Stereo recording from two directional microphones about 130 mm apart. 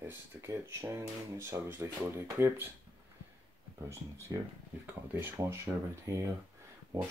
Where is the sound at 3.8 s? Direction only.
20° right (ahead or behind).